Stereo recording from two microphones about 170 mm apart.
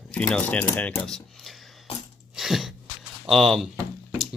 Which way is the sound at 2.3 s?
Centre (ahead or behind).